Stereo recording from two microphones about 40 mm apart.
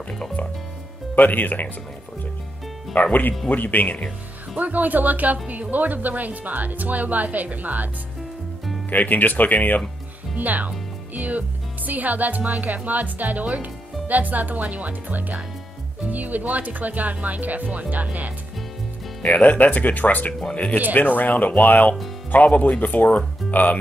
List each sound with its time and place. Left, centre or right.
1.1 s speech: left
2.9 s speech: left
4.6 s speech: right
8.9 s speech: left
10.3 s speech: right
19.3 s speech: left